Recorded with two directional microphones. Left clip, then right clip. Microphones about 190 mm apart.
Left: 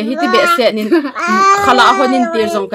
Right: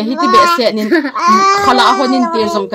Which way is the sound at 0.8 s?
25° right (ahead or behind).